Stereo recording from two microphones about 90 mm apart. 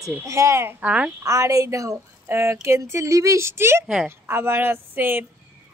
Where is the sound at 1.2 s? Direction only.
35° right (ahead or behind).